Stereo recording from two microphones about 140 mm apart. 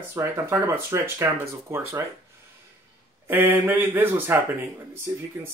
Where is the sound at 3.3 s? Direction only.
15° right (ahead or behind).